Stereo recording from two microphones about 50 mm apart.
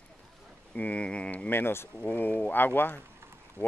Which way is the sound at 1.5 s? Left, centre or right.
Left.